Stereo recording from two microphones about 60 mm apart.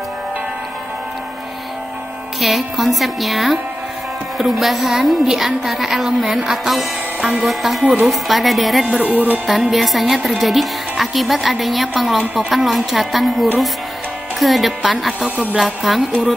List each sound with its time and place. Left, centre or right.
2.4 s a woman's voice: centre
7.8 s speech: right
8.1 s a woman's voice: centre
9.0 s speech: right
9.5 s a woman's voice: centre
15.2 s speech: right
15.5 s a woman's voice: centre